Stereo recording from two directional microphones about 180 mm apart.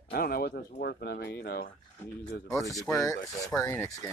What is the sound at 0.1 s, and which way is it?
Speech, 55° left (ahead or behind).